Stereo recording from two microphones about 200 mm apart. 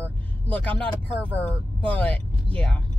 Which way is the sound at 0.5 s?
5° left (ahead or behind).